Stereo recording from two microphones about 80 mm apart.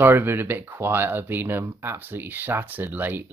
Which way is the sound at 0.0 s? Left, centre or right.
Right.